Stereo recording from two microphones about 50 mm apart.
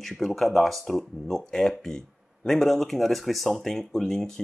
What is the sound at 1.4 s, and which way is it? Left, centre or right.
Speech, centre.